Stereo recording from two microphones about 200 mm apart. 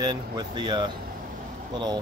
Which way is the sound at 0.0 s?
20° right (ahead or behind).